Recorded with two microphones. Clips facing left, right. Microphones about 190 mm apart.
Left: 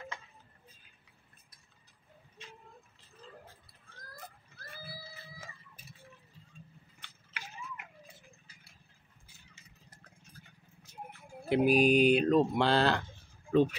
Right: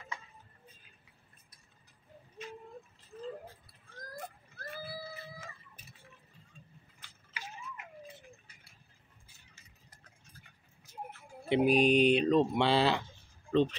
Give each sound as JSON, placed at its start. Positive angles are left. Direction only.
{"t": 7.0, "sound": "a sound", "side_deg": 60}
{"t": 11.1, "sound": "music", "side_deg": 5}
{"t": 13.5, "sound": "speech", "side_deg": 10}